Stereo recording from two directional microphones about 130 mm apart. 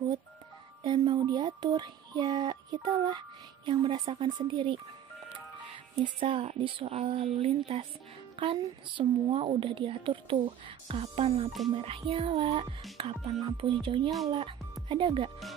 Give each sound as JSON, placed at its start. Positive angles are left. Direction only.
{"t": 0.8, "sound": "speech", "side_deg": -35}
{"t": 6.1, "sound": "a woman's voice", "side_deg": -45}
{"t": 13.7, "sound": "speech", "side_deg": -40}